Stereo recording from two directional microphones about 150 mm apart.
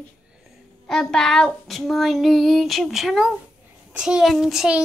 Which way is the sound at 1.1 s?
5° left (ahead or behind).